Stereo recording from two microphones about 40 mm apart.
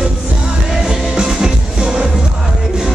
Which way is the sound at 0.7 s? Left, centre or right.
Centre.